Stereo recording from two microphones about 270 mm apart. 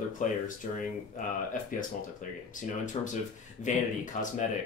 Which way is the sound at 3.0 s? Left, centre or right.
Left.